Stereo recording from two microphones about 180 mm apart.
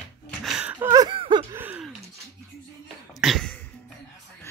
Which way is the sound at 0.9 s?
25° right (ahead or behind).